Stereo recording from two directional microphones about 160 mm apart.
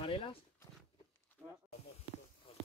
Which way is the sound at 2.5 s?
35° left (ahead or behind).